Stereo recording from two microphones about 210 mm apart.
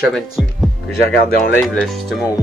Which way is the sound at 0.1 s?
Centre (ahead or behind).